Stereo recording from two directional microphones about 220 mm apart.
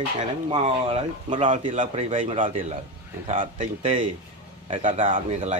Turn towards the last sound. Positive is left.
turn(degrees=-30)  # may be behind; listen again after turning